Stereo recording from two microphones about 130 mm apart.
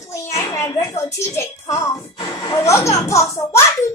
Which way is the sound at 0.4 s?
20° left (ahead or behind).